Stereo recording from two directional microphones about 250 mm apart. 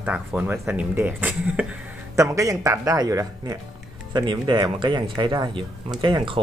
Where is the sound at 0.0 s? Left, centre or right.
Centre.